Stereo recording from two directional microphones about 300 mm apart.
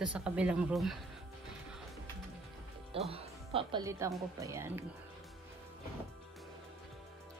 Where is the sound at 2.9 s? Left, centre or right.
Centre.